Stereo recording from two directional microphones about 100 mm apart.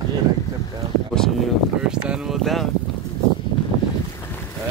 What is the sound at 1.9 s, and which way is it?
Speech, 10° right (ahead or behind).